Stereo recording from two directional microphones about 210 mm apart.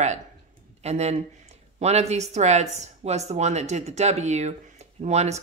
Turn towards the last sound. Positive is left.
turn(degrees=-30)  # may be behind; listen again after turning